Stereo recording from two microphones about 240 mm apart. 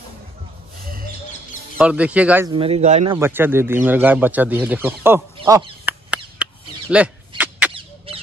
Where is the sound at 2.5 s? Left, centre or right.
Right.